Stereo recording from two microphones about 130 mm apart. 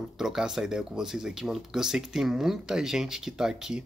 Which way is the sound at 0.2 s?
5° right (ahead or behind).